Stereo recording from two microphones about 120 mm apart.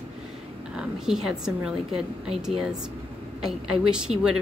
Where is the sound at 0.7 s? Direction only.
5° right (ahead or behind).